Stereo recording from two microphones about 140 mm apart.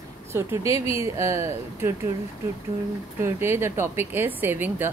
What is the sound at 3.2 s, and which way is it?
Speech, 15° right (ahead or behind).